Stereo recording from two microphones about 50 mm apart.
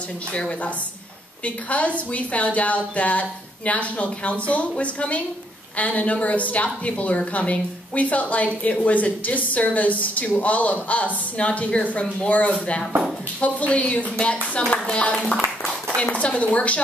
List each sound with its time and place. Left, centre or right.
1.4 s a woman's voice: left